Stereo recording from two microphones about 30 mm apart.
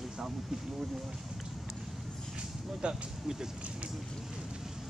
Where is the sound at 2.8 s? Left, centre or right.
Right.